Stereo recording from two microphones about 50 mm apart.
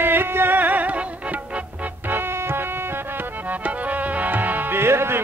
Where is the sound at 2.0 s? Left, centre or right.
Right.